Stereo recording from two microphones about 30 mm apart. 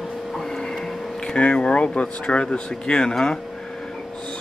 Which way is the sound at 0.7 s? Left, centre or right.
Centre.